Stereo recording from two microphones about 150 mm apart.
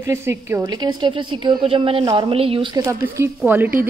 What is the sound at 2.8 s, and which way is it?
Speech, 15° right (ahead or behind).